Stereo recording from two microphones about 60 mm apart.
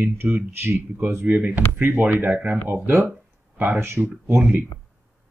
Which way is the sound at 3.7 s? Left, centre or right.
Right.